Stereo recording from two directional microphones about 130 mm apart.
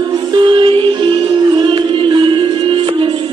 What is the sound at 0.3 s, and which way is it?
Music, 35° right (ahead or behind).